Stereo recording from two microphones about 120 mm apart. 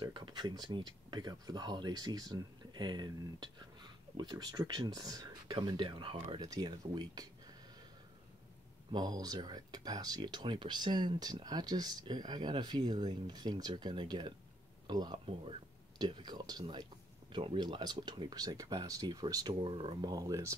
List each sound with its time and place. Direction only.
0.0 s speech: 40° right (ahead or behind)
8.9 s speech: 35° right (ahead or behind)
17.3 s speech: 45° right (ahead or behind); by 20.5 s 30° right (ahead or behind)